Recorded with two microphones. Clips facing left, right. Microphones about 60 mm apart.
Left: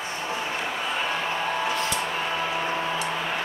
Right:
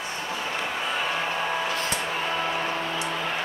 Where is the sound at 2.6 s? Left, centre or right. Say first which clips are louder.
Left 1 dB; centre.